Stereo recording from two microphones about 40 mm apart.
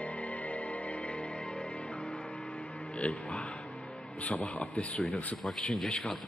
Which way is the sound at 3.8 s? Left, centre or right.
Left.